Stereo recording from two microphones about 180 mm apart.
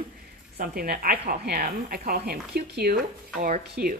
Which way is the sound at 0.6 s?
55° right (ahead or behind).